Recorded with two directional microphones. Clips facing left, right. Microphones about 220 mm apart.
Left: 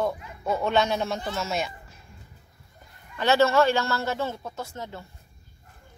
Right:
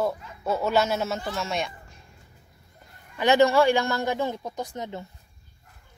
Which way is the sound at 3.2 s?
15° right (ahead or behind).